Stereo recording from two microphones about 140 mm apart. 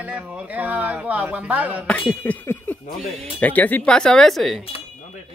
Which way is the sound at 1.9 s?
10° left (ahead or behind).